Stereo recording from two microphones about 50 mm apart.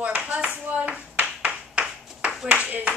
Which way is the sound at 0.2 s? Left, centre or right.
Right.